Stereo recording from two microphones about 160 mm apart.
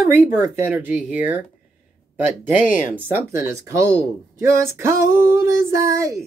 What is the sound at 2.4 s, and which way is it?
Speech, 10° right (ahead or behind).